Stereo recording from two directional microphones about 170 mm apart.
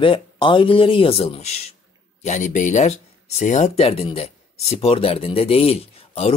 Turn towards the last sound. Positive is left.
turn(degrees=35)  # may be behind; listen again after turning